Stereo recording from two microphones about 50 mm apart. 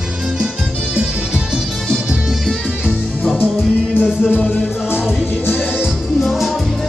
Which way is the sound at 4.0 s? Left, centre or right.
Centre.